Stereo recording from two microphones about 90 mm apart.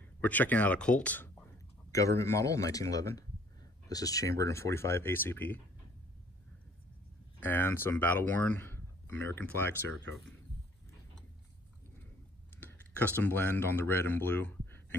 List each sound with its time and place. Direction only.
0.2 s speech: 20° left (ahead or behind)
1.9 s a man's voice: 35° left (ahead or behind); by 5.6 s 20° left (ahead or behind)
7.3 s speech: 25° left (ahead or behind)
12.5 s speech: 20° left (ahead or behind)